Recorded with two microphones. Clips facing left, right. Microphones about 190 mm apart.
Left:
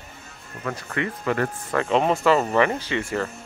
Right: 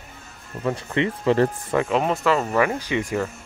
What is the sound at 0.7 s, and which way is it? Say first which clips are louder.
Speech: right 5 dB; 20° right (ahead or behind).